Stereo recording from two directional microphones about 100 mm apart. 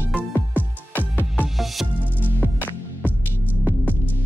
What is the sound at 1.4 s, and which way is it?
Music, centre (ahead or behind).